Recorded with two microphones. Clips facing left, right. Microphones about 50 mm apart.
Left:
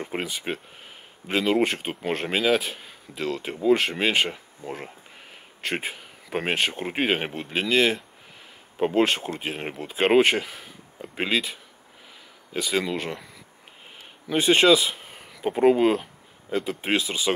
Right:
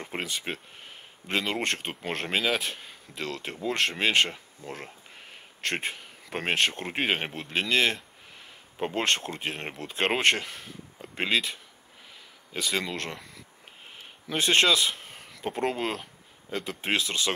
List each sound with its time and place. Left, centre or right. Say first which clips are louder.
0.0 s speech: left 3 dB; centre
12.5 s speech: left 4 dB; centre